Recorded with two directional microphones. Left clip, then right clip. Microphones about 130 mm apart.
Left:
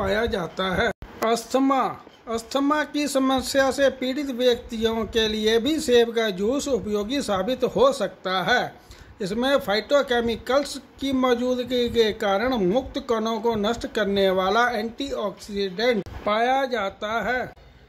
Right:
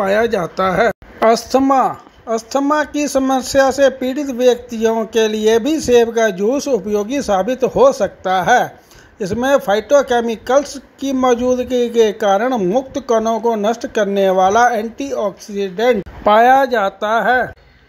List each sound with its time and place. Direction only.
0.0 s a woman's voice: 40° right (ahead or behind)
16.3 s speech: 45° right (ahead or behind)